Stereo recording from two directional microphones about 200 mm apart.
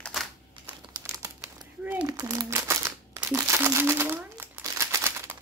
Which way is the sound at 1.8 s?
10° right (ahead or behind).